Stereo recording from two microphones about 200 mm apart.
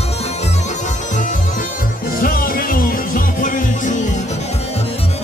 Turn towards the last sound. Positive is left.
turn(degrees=40)  # may be behind; listen again after turning